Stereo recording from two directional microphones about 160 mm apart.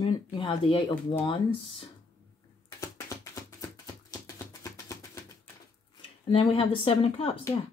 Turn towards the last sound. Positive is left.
turn(degrees=35)  # may be behind; listen again after turning